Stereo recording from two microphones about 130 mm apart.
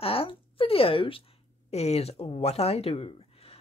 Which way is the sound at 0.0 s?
45° left (ahead or behind).